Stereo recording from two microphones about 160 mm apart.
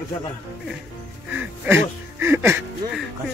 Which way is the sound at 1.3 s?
10° right (ahead or behind).